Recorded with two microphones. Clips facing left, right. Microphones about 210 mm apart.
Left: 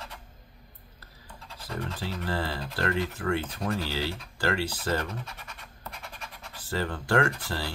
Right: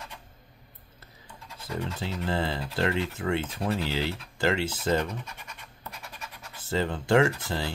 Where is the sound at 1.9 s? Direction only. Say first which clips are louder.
Right 2 dB; 20° right (ahead or behind).